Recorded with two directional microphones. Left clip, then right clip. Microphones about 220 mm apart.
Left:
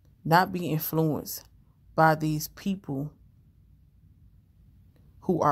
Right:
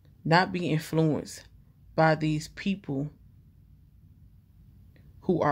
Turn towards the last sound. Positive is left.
turn(degrees=-10)  # may be behind; listen again after turning